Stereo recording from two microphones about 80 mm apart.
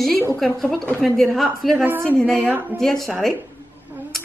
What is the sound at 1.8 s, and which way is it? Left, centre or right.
Speech, right.